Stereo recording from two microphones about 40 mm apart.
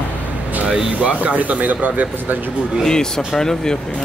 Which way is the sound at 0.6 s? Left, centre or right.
Centre.